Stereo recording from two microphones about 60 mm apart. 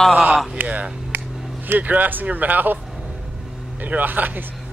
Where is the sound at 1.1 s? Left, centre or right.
Right.